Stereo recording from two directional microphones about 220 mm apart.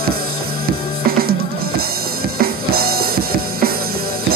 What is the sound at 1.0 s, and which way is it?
Music, 45° right (ahead or behind).